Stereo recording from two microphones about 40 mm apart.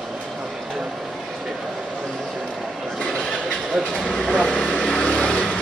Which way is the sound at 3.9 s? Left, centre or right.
Left.